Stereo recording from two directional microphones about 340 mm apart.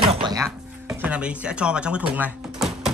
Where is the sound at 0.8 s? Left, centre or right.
Centre.